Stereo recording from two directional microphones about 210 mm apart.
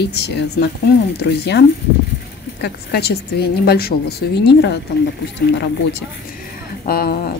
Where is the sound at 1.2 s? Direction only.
50° left (ahead or behind).